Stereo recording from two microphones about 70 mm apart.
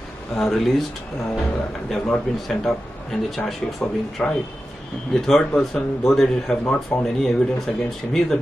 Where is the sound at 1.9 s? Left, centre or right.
Centre.